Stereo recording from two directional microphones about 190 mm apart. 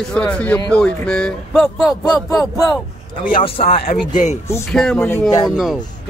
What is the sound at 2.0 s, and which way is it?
Speech, 20° left (ahead or behind).